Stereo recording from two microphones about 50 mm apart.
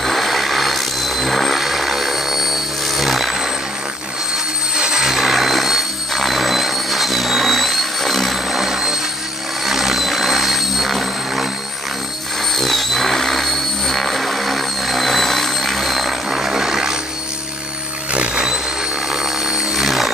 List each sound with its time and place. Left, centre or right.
0.0 s vehicle: centre
4.7 s helicopter: centre
8.5 s a sound: centre
9.7 s helicopter: centre
12.5 s tools: centre
16.3 s vehicle: centre
18.1 s music: right
19.1 s music: centre